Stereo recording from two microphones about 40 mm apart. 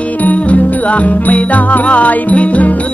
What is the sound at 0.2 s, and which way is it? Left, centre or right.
Music, left.